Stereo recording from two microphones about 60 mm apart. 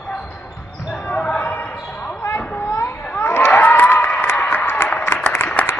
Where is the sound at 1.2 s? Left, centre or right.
Left.